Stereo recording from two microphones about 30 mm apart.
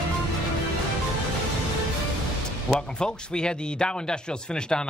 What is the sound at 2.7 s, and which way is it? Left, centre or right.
A man's voice, left.